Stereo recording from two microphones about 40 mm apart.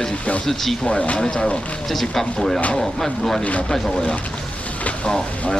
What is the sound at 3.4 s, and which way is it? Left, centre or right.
Speech, left.